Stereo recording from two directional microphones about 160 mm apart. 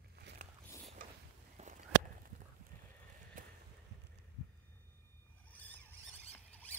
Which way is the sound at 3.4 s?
60° right (ahead or behind).